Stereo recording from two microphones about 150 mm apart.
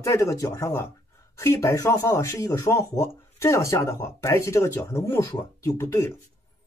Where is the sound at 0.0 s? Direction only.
20° left (ahead or behind).